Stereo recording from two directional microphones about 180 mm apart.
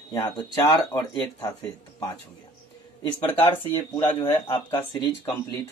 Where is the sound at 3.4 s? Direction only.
10° left (ahead or behind).